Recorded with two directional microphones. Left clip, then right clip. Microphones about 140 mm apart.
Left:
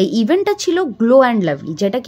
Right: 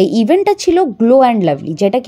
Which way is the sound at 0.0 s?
20° right (ahead or behind).